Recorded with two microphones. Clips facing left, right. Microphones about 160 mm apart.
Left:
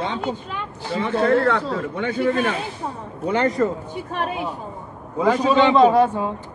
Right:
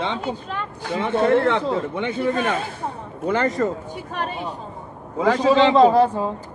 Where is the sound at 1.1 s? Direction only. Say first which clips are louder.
Even; 25° right (ahead or behind).